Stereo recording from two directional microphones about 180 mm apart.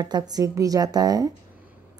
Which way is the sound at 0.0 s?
20° right (ahead or behind).